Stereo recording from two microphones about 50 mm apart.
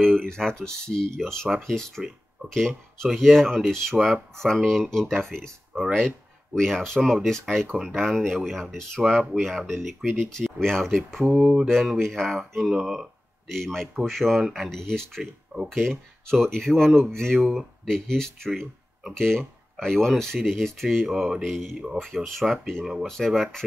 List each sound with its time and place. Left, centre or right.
0.2 s speech: centre
9.0 s mantra: centre
9.4 s speech: centre
11.3 s mantra: centre
11.6 s speech: centre
13.5 s speech: centre
15.5 s speech: right
15.9 s speech: centre
21.1 s speech: centre
22.0 s speech: centre